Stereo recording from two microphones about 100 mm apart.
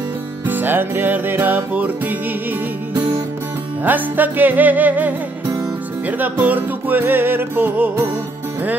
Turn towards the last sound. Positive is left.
turn(degrees=-20)  # may be behind; listen again after turning